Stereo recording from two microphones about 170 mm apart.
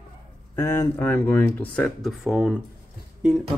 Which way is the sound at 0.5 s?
15° left (ahead or behind).